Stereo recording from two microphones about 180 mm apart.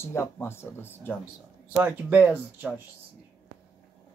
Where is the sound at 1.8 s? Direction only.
10° right (ahead or behind).